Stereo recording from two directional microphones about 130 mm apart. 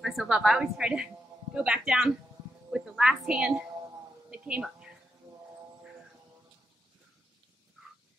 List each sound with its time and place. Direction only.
0.0 s a woman's voice: 5° right (ahead or behind)